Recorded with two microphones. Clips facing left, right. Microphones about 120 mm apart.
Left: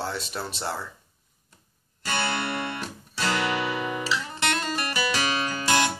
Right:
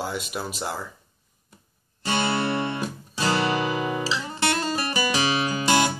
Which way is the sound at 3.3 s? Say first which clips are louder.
Right 3 dB; 30° right (ahead or behind).